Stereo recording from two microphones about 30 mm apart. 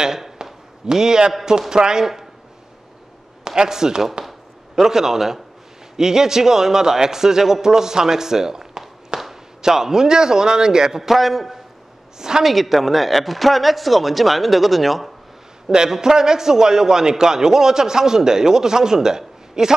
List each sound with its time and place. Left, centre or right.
0.0 s a sound: centre
0.9 s a man's voice: right
3.4 s a man's voice: right
9.1 s a sound: right
9.6 s a man's voice: centre
11.0 s speech: centre
12.2 s a man's voice: right
12.4 s speech: centre
15.9 s a man's voice: right